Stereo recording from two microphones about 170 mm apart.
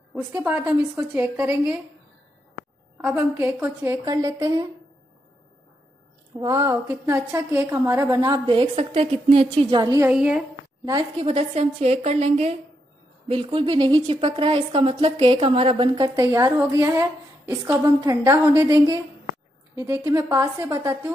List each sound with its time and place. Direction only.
0.1 s a woman's voice: 15° right (ahead or behind)
3.0 s a woman's voice: 5° right (ahead or behind)
6.3 s a woman's voice: 20° right (ahead or behind)
10.0 s a woman's voice: 5° right (ahead or behind)
11.1 s a woman's voice: 35° right (ahead or behind); by 21.1 s 15° right (ahead or behind)